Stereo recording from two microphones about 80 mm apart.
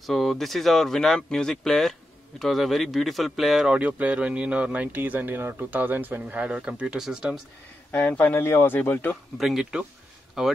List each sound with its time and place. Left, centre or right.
0.0 s speech: centre
3.7 s speech: centre
7.9 s speech: left
9.4 s speech: centre